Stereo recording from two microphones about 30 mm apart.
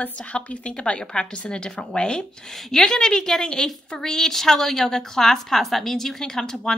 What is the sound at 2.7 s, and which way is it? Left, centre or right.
A woman's voice, centre.